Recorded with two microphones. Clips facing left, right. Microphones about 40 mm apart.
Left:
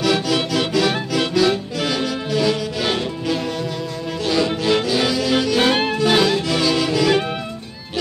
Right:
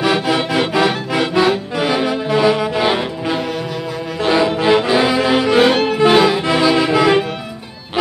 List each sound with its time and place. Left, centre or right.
0.0 s music: right